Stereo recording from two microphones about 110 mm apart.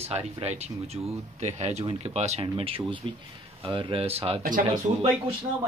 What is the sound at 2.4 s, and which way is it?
Speech, 60° right (ahead or behind).